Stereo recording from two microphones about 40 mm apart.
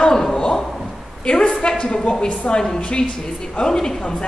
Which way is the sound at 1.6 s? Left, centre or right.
Left.